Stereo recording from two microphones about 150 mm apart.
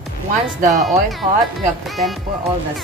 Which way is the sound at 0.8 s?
Centre (ahead or behind).